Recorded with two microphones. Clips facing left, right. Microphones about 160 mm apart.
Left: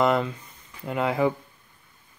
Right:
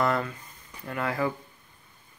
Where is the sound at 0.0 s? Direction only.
20° left (ahead or behind).